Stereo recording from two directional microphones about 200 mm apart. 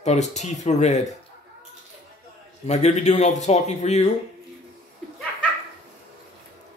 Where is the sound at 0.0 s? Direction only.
35° left (ahead or behind).